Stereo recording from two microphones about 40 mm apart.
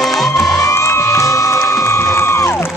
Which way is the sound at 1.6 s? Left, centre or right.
Left.